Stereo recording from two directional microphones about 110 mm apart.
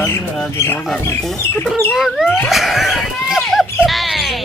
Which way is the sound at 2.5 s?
Centre (ahead or behind).